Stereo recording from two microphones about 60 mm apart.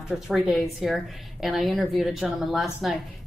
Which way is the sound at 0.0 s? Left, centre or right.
Centre.